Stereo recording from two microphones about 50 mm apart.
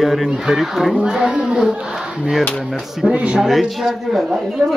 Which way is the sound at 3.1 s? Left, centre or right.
Right.